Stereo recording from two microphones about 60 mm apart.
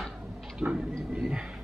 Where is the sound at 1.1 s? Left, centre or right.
Centre.